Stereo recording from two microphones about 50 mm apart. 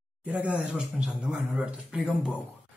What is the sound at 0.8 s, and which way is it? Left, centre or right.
A man's voice, centre.